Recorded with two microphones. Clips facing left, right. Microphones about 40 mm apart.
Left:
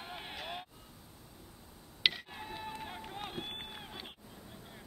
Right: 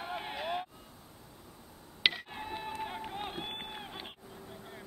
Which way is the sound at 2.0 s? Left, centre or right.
Centre.